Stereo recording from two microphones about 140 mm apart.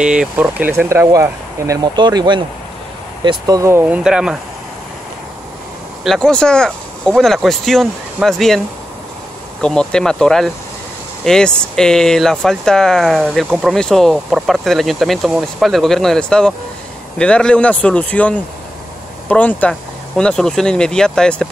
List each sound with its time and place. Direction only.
0.0 s speech: 5° right (ahead or behind)
6.0 s speech: 5° left (ahead or behind)
9.6 s speech: 5° left (ahead or behind)